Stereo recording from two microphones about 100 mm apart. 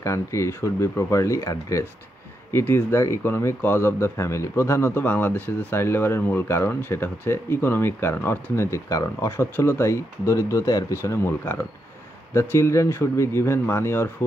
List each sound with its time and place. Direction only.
0.0 s speech: 30° left (ahead or behind)